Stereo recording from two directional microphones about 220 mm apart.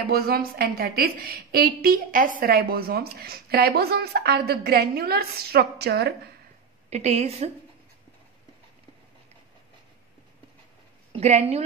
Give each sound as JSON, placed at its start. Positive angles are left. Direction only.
{"t": 0.0, "sound": "a woman's voice", "side_deg": -45}
{"t": 6.9, "sound": "a woman's voice", "side_deg": -30}
{"t": 11.1, "sound": "a woman's voice", "side_deg": -30}